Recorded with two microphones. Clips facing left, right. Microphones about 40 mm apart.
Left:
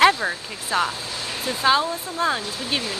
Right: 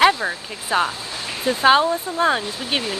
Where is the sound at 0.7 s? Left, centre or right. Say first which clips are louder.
Right 2 dB; right.